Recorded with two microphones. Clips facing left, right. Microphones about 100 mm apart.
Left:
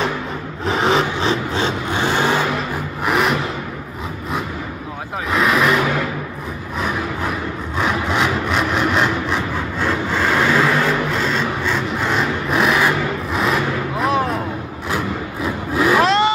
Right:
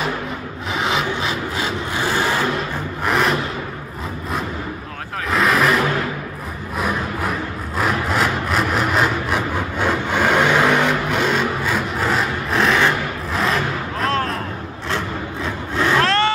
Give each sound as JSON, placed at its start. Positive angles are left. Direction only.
{"t": 0.7, "sound": "vehicle", "side_deg": 35}
{"t": 3.1, "sound": "a sound", "side_deg": 0}
{"t": 5.3, "sound": "vehicle", "side_deg": 0}
{"t": 7.7, "sound": "sawing", "side_deg": 0}
{"t": 14.9, "sound": "vehicle", "side_deg": 5}